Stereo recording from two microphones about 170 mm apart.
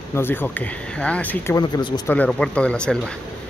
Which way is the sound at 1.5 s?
25° left (ahead or behind).